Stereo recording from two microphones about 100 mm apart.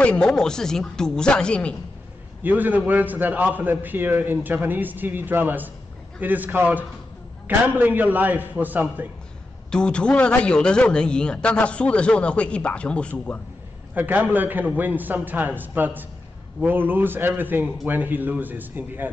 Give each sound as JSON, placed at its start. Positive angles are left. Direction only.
{"t": 0.0, "sound": "a man's voice", "side_deg": 10}
{"t": 2.4, "sound": "a man's voice", "side_deg": -15}
{"t": 9.7, "sound": "a man's voice", "side_deg": 10}
{"t": 13.9, "sound": "a man's voice", "side_deg": -20}